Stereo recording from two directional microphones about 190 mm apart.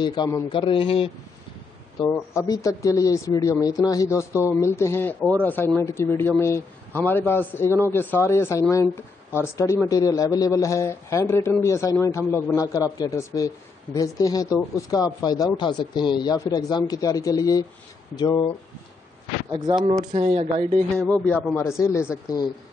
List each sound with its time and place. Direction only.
0.0 s a man's voice: 20° left (ahead or behind)
2.0 s a man's voice: 15° left (ahead or behind)
19.9 s speech: 25° right (ahead or behind)
20.2 s speech: 35° right (ahead or behind)
20.9 s a man's voice: 5° left (ahead or behind)